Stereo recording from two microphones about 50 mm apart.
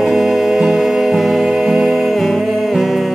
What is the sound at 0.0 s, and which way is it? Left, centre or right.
Music, centre.